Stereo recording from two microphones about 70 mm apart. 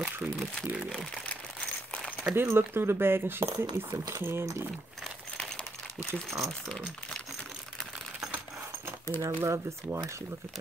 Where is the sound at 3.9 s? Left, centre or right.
Right.